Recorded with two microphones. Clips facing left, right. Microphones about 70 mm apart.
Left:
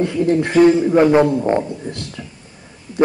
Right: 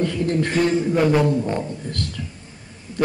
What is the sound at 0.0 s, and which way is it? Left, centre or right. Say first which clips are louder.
A man's voice: left 5 dB; centre.